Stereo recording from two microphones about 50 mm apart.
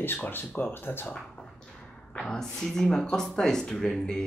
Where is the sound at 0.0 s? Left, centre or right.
Left.